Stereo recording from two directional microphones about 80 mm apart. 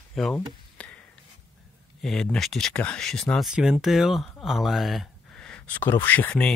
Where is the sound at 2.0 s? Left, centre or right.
Centre.